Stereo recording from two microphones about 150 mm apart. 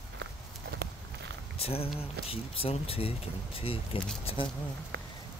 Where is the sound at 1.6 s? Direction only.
40° left (ahead or behind).